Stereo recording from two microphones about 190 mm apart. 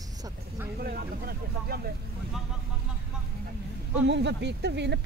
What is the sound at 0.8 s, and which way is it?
Speech, 55° right (ahead or behind).